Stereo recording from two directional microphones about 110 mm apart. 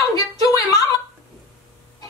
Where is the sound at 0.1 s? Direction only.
35° left (ahead or behind).